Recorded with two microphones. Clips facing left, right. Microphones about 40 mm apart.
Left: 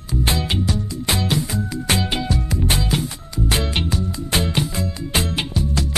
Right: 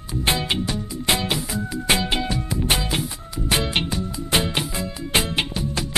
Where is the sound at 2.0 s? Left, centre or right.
Centre.